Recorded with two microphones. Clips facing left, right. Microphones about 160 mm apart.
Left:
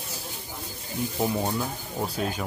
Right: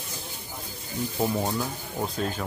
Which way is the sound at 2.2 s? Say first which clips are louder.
Left 1 dB; 10° left (ahead or behind).